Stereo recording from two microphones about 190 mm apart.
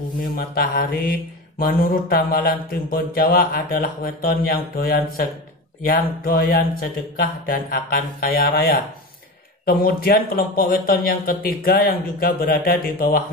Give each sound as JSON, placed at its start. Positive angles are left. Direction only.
{"t": 0.3, "sound": "speech", "side_deg": 50}